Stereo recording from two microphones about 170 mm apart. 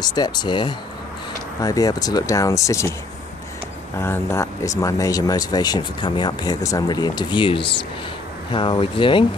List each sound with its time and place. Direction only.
0.0 s speech: 25° left (ahead or behind)
4.0 s speech: 15° left (ahead or behind); by 9.2 s 30° left (ahead or behind)